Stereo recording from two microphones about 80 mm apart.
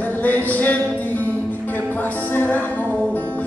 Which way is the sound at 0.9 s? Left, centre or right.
Left.